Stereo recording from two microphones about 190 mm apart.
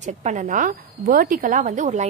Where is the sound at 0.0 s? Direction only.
40° right (ahead or behind).